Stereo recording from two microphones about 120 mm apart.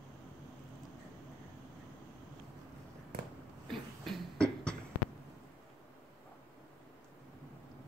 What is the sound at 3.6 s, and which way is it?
Beatboxing, 5° left (ahead or behind).